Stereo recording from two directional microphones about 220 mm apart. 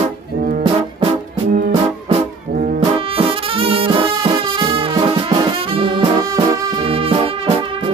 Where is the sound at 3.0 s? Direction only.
25° right (ahead or behind).